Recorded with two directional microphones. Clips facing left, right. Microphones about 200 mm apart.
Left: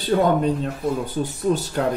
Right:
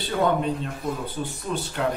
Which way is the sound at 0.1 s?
45° left (ahead or behind).